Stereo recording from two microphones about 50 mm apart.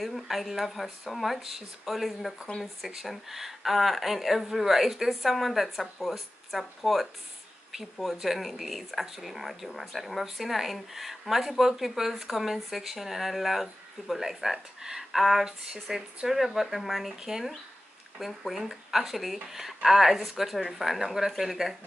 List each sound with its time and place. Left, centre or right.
0.0 s speech: centre